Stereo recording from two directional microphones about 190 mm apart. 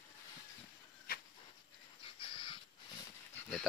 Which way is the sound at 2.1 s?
25° left (ahead or behind).